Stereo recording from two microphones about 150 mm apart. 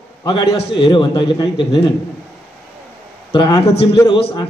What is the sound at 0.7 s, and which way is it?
A man's voice, 30° left (ahead or behind).